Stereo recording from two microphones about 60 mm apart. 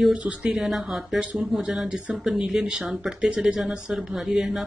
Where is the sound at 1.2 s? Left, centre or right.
Centre.